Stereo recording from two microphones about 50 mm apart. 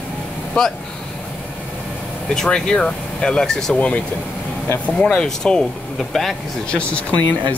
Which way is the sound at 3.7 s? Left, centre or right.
Left.